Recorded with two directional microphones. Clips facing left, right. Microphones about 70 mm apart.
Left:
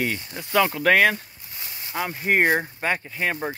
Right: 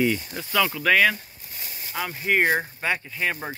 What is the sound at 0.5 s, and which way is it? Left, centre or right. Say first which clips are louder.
Speech: left 2 dB; left.